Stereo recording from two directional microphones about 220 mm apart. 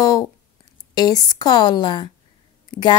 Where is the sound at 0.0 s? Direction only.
15° left (ahead or behind).